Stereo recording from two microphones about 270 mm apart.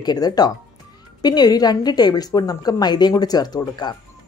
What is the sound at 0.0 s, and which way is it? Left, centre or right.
A woman's voice, centre.